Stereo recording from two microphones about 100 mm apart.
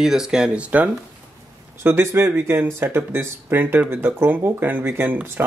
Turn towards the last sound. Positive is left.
turn(degrees=-20)  # may be behind; listen again after turning